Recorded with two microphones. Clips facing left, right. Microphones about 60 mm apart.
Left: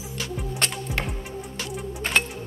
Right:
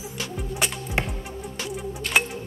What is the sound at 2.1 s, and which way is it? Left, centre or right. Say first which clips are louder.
Music: right 1 dB; left.